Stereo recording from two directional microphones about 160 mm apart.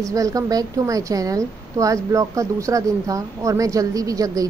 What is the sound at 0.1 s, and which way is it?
A woman's voice, 20° right (ahead or behind).